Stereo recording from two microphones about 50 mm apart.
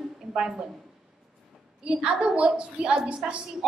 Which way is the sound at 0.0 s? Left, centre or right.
Centre.